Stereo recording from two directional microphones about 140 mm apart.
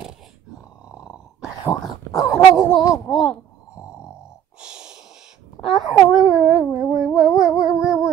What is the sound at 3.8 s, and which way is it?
Snoring, 20° left (ahead or behind).